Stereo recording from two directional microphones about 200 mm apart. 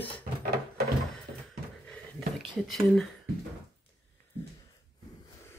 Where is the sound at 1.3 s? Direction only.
45° right (ahead or behind).